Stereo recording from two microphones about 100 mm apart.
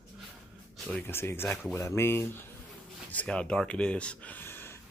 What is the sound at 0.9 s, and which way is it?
Speech, 20° left (ahead or behind).